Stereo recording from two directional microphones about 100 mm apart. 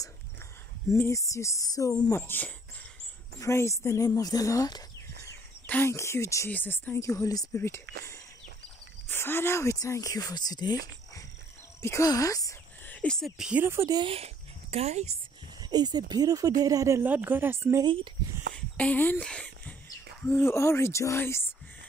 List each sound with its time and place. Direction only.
0.8 s speech: 30° left (ahead or behind)
5.7 s speech: 25° left (ahead or behind)
7.1 s speech: 35° left (ahead or behind)
7.5 s speech: 25° left (ahead or behind); by 11.2 s 40° left (ahead or behind)
11.8 s speech: 30° left (ahead or behind)
12.8 s a sound: 15° left (ahead or behind)
13.4 s speech: 10° right (ahead or behind)
13.7 s speech: 30° right (ahead or behind)
14.0 s speech: 85° right
15.6 s speech: 45° right (ahead or behind)
17.0 s speech: 20° right (ahead or behind)
18.5 s a sound: 15° left (ahead or behind)
20.2 s speech: 25° left (ahead or behind)